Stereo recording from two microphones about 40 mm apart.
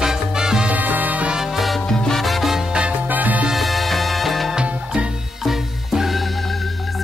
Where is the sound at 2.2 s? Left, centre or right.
Centre.